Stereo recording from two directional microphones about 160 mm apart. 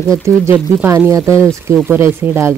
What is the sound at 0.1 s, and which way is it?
Speech, 20° right (ahead or behind).